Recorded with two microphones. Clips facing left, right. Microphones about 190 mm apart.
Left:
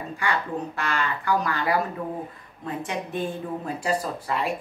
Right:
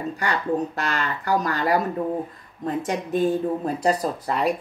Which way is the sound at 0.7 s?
40° right (ahead or behind).